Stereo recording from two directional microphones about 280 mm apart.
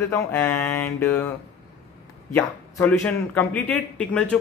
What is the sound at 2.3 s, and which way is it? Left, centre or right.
A man's voice, centre.